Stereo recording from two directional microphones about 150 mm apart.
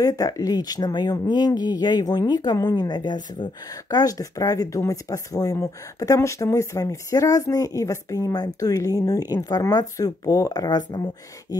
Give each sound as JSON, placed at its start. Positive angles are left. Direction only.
{"t": 0.0, "sound": "speech", "side_deg": 25}